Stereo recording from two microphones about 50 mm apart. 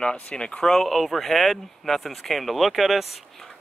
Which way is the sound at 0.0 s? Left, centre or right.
Centre.